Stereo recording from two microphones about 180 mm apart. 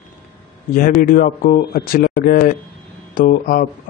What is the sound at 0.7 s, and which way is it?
Speech, 50° left (ahead or behind).